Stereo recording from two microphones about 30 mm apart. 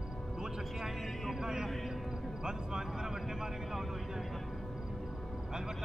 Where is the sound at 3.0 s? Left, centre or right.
Centre.